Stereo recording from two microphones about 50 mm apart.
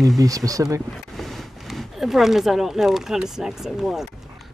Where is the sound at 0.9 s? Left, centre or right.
Centre.